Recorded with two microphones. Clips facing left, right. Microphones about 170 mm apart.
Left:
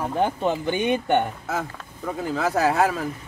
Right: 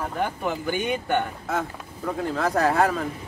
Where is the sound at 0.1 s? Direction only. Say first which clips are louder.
Left 4 dB; 25° left (ahead or behind).